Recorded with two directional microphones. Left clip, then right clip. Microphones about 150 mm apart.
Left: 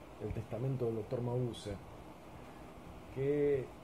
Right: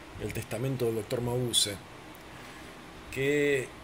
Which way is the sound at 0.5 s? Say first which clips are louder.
Right 7 dB; 40° right (ahead or behind).